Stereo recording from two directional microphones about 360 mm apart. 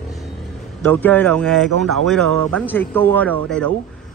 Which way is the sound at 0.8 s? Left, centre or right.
Centre.